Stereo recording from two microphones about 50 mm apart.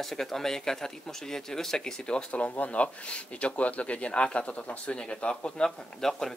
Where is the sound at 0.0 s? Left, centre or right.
Centre.